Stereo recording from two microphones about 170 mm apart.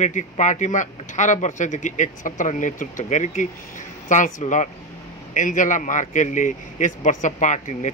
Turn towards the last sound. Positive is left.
turn(degrees=45)  # may be behind; listen again after turning